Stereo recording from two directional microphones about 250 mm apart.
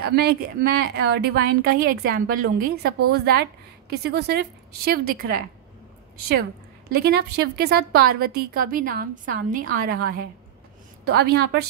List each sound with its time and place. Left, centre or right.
0.0 s a woman's voice: right
6.9 s a woman's voice: right